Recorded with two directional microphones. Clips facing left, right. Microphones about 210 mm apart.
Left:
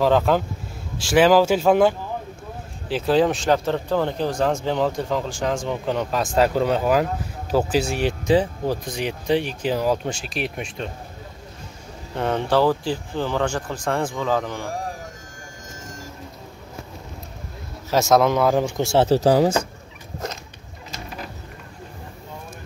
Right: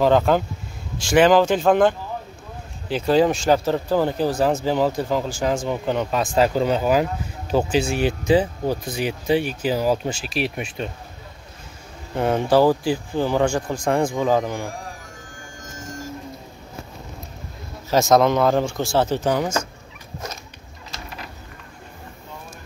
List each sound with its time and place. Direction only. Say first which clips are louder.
0.0 s a man's voice: right 1 dB; centre (ahead or behind)
12.2 s speech: right 3 dB; 10° right (ahead or behind)
17.8 s a man's voice: right 1 dB; 5° left (ahead or behind)
18.8 s a man's voice: left 3 dB; 25° left (ahead or behind)
19.1 s speech: left 5 dB; 35° left (ahead or behind)